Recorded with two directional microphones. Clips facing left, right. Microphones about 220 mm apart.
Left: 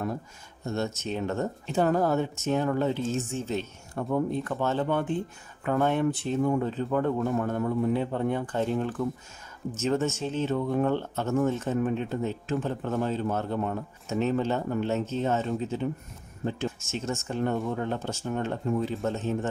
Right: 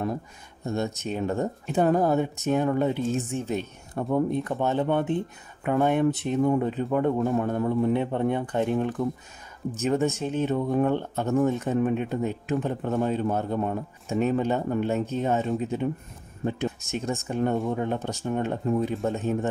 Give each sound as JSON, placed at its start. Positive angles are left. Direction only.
{"t": 0.7, "sound": "speech", "side_deg": -15}